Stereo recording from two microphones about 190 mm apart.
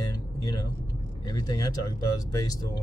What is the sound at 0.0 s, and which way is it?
Vehicle, 20° left (ahead or behind).